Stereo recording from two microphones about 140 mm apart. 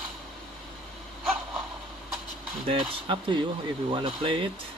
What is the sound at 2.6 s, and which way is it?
Speech, 35° right (ahead or behind).